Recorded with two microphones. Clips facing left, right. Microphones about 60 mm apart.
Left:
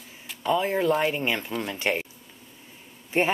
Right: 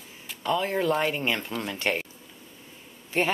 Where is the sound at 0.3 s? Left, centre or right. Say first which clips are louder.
Left 2 dB; centre.